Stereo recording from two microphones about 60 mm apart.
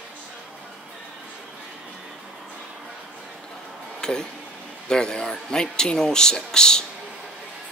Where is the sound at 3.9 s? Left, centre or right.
Centre.